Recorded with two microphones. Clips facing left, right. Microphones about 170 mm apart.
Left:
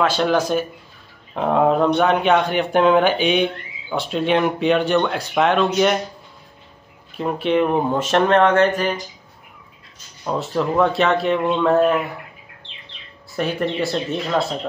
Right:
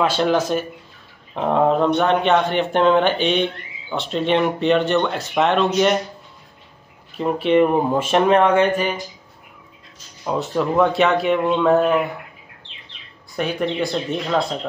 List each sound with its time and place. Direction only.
0.1 s speech: centre (ahead or behind)
7.2 s speech: centre (ahead or behind)
10.2 s speech: 5° right (ahead or behind)
13.4 s speech: centre (ahead or behind)